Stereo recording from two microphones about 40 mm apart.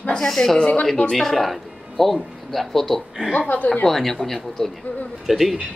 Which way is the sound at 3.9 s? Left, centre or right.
Centre.